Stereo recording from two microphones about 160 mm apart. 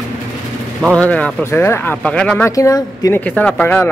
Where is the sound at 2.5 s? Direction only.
20° left (ahead or behind).